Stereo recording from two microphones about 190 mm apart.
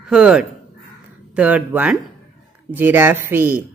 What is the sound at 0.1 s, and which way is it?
Speech, 5° right (ahead or behind).